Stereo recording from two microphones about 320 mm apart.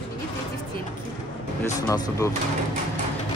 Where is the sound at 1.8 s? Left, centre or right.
Centre.